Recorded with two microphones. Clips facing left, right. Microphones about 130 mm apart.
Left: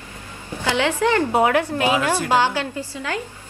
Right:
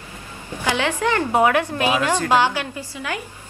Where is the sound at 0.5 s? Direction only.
15° right (ahead or behind).